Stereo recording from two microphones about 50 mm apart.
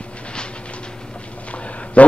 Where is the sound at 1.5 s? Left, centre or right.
Left.